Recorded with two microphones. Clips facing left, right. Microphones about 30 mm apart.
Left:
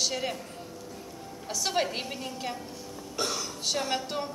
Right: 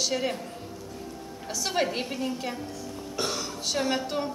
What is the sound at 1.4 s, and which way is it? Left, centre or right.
A woman's voice, centre.